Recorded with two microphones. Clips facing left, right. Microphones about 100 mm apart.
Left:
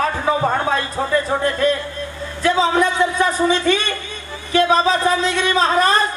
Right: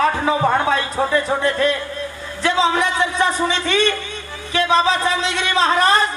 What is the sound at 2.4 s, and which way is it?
Speech, 45° left (ahead or behind).